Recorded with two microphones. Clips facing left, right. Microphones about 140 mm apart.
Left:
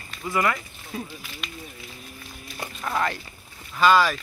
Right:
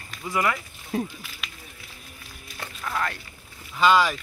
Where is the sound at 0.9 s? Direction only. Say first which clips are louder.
Right 6 dB; 60° right (ahead or behind).